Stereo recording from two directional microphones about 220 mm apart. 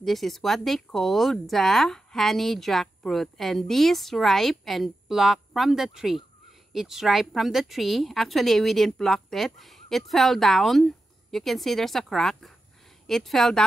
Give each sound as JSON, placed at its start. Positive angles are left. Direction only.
{"t": 0.0, "sound": "speech", "side_deg": 0}